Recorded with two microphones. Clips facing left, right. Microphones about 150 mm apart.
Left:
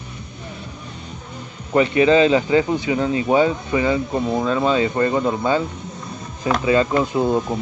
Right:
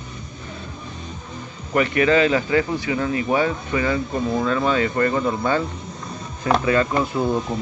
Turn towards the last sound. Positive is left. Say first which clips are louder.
# left 3 dB
turn(degrees=20)  # may be behind; listen again after turning